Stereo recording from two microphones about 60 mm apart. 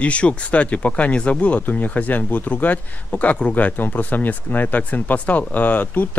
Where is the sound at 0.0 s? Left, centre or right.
Left.